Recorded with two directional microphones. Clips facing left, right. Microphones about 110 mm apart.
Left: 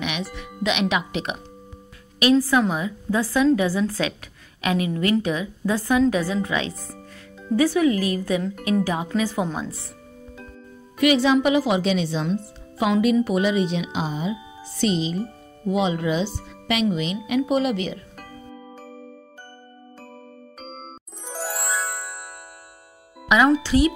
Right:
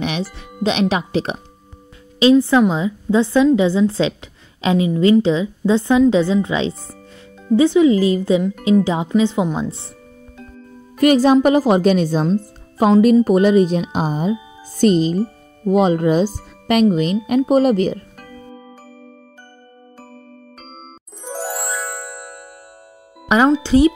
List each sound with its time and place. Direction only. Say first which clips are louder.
0.0 s speech: right 5 dB; 35° right (ahead or behind)
2.1 s a woman's voice: right 6 dB; 25° right (ahead or behind)
11.0 s a woman's voice: right 6 dB; 40° right (ahead or behind)
21.2 s music: right 5 dB; centre (ahead or behind)
23.2 s music: right 3 dB; 35° right (ahead or behind)